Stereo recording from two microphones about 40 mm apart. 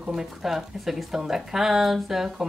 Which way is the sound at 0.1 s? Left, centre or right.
Centre.